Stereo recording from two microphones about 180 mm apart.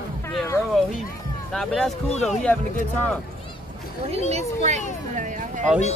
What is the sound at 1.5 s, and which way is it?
Speech, centre (ahead or behind).